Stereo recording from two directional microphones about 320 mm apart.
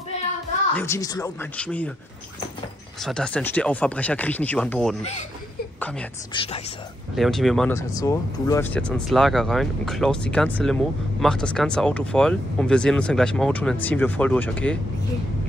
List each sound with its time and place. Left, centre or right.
0.7 s speech: centre
3.0 s speech: centre
5.8 s a sound: centre
6.3 s speech: centre
7.2 s speech: centre